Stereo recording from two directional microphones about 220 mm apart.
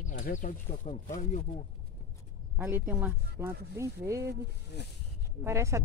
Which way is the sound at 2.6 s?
10° right (ahead or behind).